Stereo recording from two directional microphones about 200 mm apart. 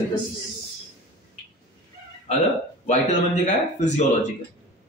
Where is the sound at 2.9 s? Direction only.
35° left (ahead or behind).